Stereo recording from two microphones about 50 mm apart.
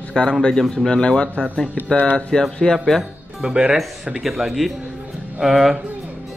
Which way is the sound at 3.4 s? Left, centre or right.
Centre.